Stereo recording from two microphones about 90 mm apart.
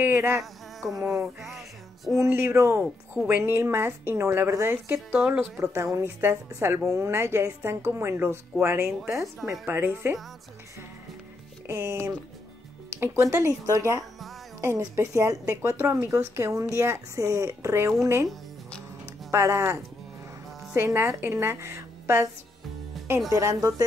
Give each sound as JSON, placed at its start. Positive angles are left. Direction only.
{"t": 0.1, "sound": "insect", "side_deg": -25}
{"t": 0.4, "sound": "speech", "side_deg": 0}
{"t": 2.2, "sound": "a woman's voice", "side_deg": -25}
{"t": 4.9, "sound": "speech", "side_deg": -10}
{"t": 5.6, "sound": "a woman's voice", "side_deg": -35}
{"t": 11.6, "sound": "a woman's voice", "side_deg": -30}
{"t": 19.3, "sound": "a woman's voice", "side_deg": -35}
{"t": 23.3, "sound": "speech", "side_deg": -35}